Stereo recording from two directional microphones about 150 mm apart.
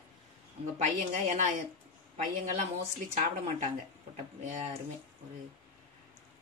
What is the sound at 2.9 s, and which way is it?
A man's voice, 55° right (ahead or behind).